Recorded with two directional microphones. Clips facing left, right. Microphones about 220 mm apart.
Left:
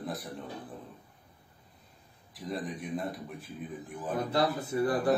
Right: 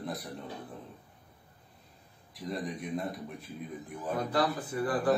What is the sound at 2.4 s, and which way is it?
A man's voice, centre (ahead or behind).